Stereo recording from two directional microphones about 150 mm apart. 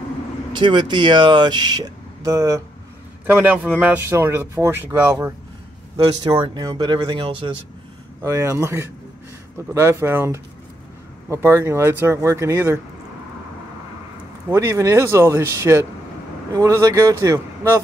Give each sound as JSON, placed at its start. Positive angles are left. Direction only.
{"t": 0.5, "sound": "speech", "side_deg": -30}
{"t": 6.2, "sound": "speech", "side_deg": -30}
{"t": 8.2, "sound": "speech", "side_deg": -20}
{"t": 14.5, "sound": "speech", "side_deg": -20}